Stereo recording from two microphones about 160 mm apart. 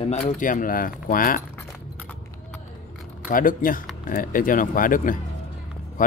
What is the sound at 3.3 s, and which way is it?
Speech, 60° left (ahead or behind).